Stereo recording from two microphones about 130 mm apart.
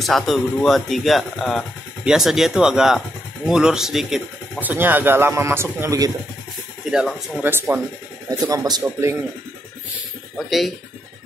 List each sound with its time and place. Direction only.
0.0 s speech: centre (ahead or behind)
4.6 s speech: 15° right (ahead or behind)
6.9 s speech: centre (ahead or behind)
7.3 s speech: 15° right (ahead or behind)
10.3 s speech: centre (ahead or behind)